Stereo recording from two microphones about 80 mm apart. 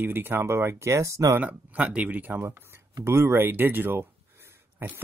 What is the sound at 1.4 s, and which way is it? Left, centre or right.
Speech, centre.